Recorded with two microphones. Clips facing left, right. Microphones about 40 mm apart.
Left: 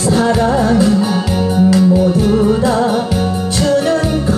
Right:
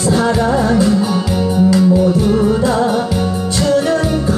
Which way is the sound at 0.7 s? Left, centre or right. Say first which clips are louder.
Left 1 dB; centre.